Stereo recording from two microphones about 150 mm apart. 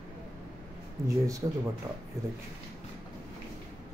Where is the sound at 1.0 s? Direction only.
20° right (ahead or behind).